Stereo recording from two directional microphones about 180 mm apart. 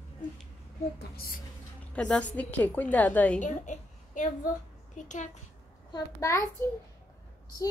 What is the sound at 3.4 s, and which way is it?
A woman's voice, 45° left (ahead or behind).